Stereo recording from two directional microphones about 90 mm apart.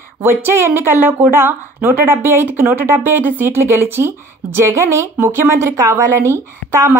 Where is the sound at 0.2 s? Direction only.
25° right (ahead or behind).